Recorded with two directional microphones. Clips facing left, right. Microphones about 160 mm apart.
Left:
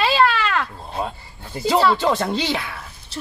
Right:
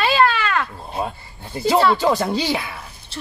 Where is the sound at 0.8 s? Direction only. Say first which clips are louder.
Right 1 dB; 15° right (ahead or behind).